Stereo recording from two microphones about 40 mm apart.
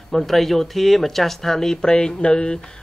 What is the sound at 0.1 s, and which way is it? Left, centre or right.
Speech, centre.